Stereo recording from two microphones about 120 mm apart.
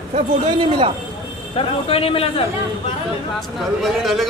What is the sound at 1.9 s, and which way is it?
Speech, 50° left (ahead or behind).